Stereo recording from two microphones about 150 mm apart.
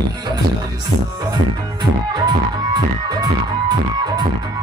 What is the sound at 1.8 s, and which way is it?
Music, 25° right (ahead or behind).